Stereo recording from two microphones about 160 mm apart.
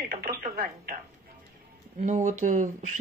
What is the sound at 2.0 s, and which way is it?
Speech, 50° right (ahead or behind).